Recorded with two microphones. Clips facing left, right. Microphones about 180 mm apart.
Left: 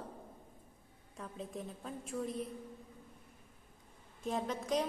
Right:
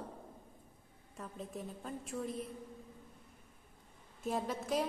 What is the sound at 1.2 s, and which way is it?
A woman's voice, centre (ahead or behind).